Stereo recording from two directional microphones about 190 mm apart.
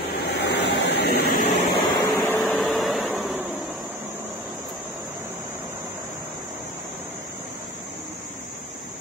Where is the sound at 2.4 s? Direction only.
Centre (ahead or behind).